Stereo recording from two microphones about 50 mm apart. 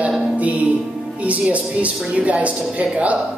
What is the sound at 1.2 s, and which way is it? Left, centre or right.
Speech, right.